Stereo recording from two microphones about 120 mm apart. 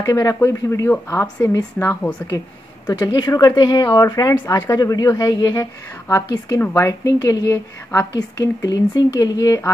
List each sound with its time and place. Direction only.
0.0 s speech: 25° left (ahead or behind)